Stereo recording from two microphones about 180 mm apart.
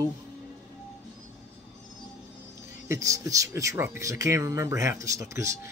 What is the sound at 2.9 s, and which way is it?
Speech, 15° right (ahead or behind).